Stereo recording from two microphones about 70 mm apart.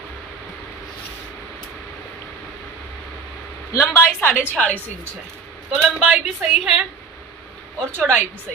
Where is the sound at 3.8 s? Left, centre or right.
Left.